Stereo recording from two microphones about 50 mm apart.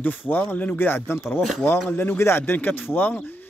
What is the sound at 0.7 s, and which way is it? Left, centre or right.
Speech, left.